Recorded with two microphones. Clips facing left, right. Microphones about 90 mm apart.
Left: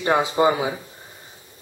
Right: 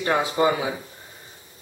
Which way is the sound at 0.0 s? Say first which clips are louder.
Left 2 dB; 20° left (ahead or behind).